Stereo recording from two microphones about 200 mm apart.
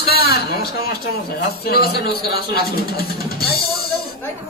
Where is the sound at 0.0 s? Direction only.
50° left (ahead or behind).